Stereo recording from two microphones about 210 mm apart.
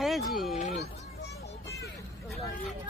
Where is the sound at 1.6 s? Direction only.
15° left (ahead or behind).